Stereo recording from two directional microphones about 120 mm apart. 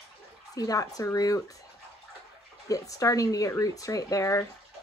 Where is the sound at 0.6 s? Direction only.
30° left (ahead or behind).